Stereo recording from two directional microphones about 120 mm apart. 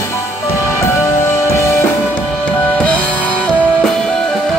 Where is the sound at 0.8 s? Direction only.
25° left (ahead or behind).